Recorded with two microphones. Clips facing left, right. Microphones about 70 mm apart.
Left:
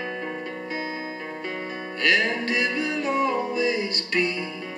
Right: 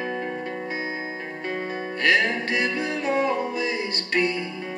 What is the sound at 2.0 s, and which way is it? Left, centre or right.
Music, right.